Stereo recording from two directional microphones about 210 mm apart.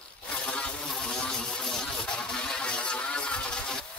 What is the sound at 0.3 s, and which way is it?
Vehicle, 5° left (ahead or behind).